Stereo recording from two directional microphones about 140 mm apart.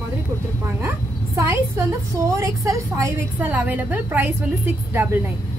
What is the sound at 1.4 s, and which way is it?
A woman's voice, 20° right (ahead or behind).